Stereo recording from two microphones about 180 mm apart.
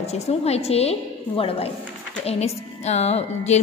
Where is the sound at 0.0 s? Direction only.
35° left (ahead or behind).